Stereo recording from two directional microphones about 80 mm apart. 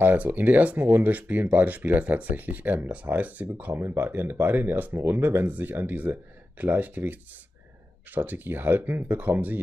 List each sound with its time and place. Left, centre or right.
0.0 s speech: right